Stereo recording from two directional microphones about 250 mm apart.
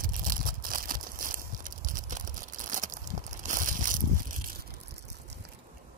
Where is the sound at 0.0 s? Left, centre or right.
Right.